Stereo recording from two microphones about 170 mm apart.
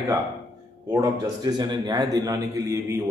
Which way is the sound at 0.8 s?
20° right (ahead or behind).